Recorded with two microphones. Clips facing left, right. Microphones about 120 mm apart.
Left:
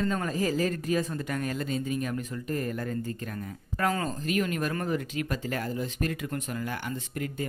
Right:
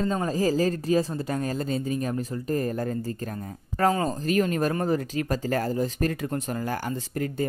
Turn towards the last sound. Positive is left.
turn(degrees=-35)  # may be behind; listen again after turning